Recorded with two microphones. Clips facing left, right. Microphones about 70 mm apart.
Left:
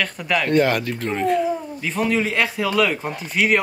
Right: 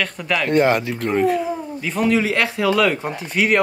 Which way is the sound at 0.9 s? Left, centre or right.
Centre.